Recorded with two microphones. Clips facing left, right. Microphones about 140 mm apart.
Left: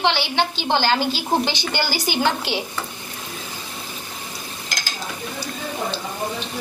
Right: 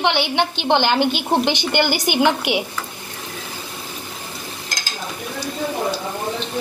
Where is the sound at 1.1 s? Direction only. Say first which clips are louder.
Right 3 dB; 60° right (ahead or behind).